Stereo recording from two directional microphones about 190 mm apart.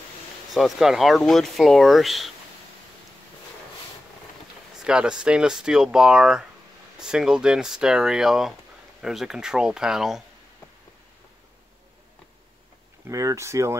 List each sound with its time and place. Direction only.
0.5 s speech: centre (ahead or behind)
4.8 s speech: 5° right (ahead or behind)
13.0 s speech: 15° right (ahead or behind)